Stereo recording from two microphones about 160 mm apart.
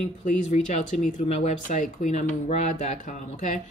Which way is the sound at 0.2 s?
50° left (ahead or behind).